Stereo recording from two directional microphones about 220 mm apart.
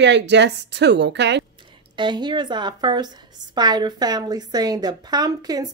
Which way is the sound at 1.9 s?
20° right (ahead or behind).